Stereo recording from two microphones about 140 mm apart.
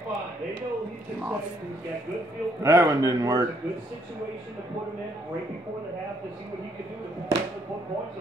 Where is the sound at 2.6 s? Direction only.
20° right (ahead or behind).